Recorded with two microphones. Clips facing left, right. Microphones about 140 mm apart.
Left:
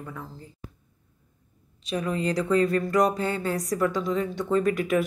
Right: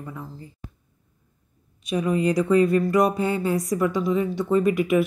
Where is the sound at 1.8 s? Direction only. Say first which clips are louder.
Right 5 dB; 15° right (ahead or behind).